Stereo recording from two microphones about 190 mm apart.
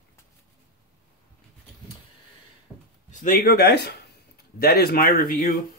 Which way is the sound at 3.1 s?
45° left (ahead or behind).